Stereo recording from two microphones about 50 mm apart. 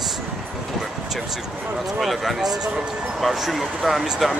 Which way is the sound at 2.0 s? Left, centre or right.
Centre.